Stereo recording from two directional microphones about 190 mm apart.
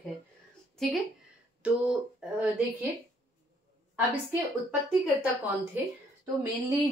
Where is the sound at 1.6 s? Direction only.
5° right (ahead or behind).